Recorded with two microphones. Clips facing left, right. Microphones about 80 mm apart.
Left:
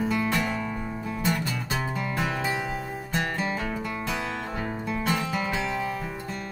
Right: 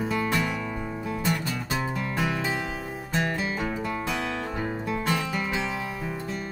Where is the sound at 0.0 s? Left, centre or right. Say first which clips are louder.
Even; centre.